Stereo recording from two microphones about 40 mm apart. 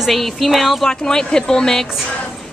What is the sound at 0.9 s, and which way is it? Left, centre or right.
Speech, centre.